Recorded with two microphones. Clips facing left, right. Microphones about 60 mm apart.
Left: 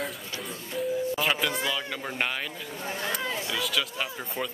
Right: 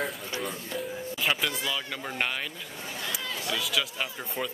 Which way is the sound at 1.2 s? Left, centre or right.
Centre.